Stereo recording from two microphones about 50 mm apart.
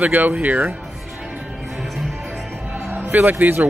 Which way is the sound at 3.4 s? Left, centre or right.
Right.